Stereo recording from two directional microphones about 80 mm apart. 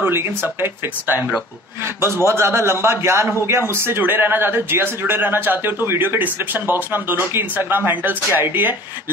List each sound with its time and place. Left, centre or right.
0.0 s speech: right
2.2 s a man's voice: right